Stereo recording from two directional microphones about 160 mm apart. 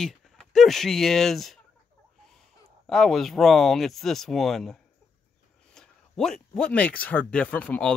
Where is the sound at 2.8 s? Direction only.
Centre (ahead or behind).